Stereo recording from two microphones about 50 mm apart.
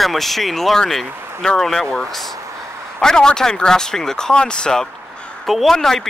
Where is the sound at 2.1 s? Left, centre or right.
Centre.